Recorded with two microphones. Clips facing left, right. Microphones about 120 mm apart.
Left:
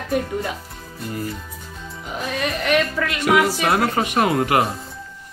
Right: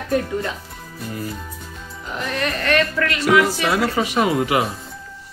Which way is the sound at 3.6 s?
55° left (ahead or behind).